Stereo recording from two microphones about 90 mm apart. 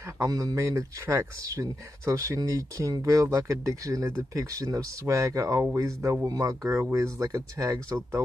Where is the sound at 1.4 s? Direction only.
40° right (ahead or behind).